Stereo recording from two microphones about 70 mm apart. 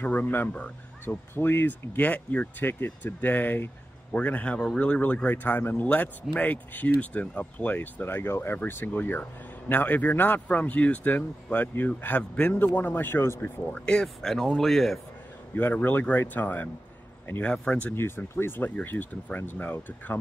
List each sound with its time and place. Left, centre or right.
0.0 s speech: left
14.0 s speech: centre
15.5 s speech: left
17.9 s speech: left